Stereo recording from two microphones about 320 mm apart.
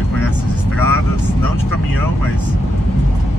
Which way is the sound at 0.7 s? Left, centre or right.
Right.